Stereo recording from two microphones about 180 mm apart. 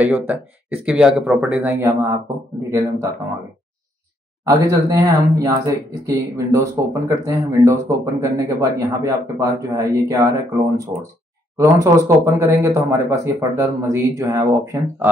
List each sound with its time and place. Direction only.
0.8 s speech: 5° right (ahead or behind)
4.5 s speech: 20° right (ahead or behind)